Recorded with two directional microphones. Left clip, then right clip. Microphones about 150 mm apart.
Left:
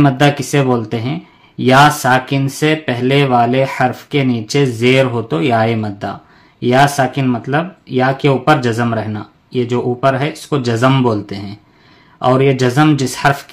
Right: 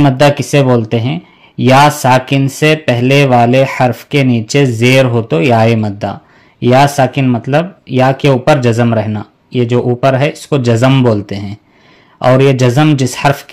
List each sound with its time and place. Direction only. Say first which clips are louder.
0.0 s speech: right 4 dB; 35° right (ahead or behind)
11.2 s speech: right 4 dB; 35° right (ahead or behind)